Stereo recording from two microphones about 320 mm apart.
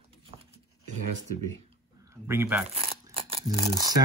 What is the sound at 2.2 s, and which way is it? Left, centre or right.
Speech, centre.